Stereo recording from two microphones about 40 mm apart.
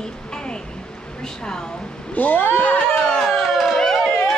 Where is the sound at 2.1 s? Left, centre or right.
Left.